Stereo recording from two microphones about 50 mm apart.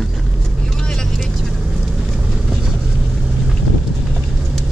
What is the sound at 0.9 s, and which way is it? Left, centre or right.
Vehicle, centre.